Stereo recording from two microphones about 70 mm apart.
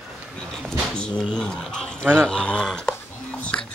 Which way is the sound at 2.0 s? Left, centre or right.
Centre.